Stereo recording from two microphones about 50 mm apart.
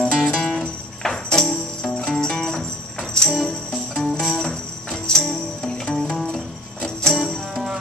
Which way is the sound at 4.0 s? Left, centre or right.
Centre.